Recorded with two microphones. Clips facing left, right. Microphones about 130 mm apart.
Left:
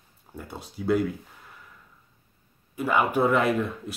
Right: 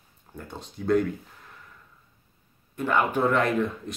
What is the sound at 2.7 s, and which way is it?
Speech, 5° left (ahead or behind).